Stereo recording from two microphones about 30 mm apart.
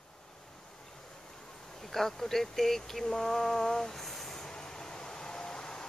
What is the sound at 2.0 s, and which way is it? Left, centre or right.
Speech, centre.